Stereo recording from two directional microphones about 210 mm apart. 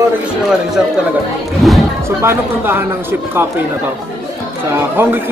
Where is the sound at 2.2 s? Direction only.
10° right (ahead or behind).